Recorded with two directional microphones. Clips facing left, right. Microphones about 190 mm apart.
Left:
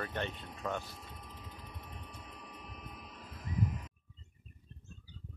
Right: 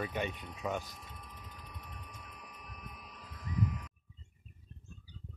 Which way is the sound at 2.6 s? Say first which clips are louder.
Left 3 dB; 30° left (ahead or behind).